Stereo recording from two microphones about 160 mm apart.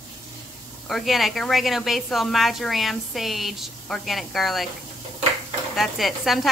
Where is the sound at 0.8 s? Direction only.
Centre (ahead or behind).